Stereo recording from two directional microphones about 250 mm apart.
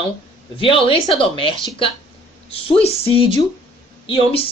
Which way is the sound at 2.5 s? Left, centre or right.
Left.